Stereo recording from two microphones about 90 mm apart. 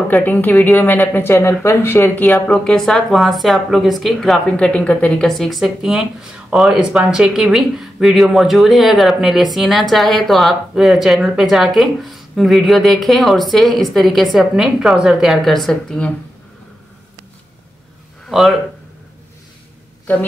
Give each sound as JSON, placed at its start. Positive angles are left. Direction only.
{"t": 0.1, "sound": "speech", "side_deg": 20}
{"t": 2.5, "sound": "speech", "side_deg": 5}
{"t": 4.5, "sound": "speech", "side_deg": 10}
{"t": 5.3, "sound": "speech", "side_deg": 0}